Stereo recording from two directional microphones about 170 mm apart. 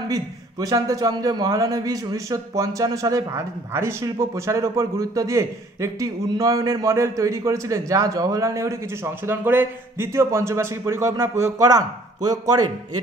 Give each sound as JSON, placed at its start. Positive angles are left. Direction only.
{"t": 0.1, "sound": "a man's voice", "side_deg": -20}